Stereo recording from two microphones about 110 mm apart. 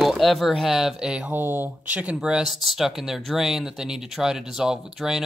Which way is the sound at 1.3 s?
20° right (ahead or behind).